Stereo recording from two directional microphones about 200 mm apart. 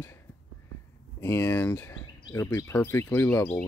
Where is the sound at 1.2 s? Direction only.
10° left (ahead or behind).